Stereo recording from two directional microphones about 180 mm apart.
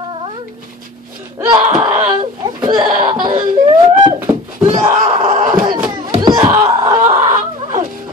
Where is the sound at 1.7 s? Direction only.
10° right (ahead or behind).